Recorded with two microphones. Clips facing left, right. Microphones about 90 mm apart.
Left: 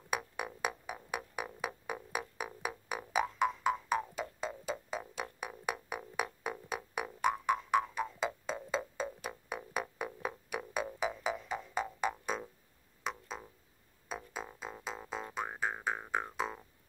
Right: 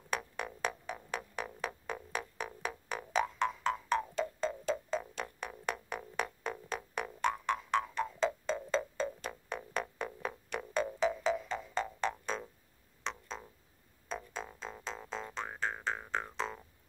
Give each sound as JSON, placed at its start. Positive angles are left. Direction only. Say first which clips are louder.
{"t": 0.1, "sound": "music", "louder": "even", "side_deg": 10}